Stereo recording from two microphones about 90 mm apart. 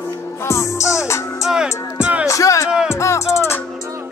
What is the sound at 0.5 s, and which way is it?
Music, 35° left (ahead or behind).